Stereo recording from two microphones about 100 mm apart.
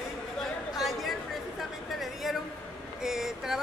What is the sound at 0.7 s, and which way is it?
Chatter, centre (ahead or behind).